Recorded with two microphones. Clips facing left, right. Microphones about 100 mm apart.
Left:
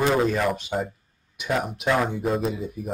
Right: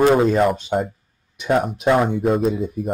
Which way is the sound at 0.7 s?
35° right (ahead or behind).